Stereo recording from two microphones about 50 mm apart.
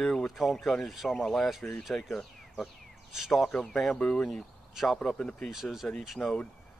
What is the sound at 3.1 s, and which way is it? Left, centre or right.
Speech, centre.